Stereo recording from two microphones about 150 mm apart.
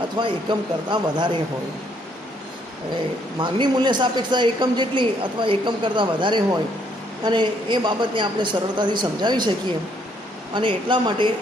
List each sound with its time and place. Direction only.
0.2 s a man's voice: 30° right (ahead or behind)
3.3 s a man's voice: 30° right (ahead or behind)
10.5 s a man's voice: 30° right (ahead or behind)